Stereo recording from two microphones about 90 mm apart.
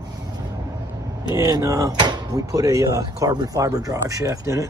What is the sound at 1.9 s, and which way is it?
Speech, 55° right (ahead or behind).